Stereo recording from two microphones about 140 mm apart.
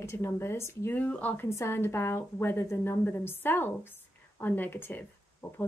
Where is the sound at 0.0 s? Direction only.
20° left (ahead or behind).